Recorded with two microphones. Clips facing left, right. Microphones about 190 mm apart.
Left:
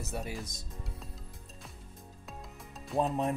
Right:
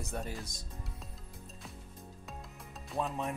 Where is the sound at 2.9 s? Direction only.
35° left (ahead or behind).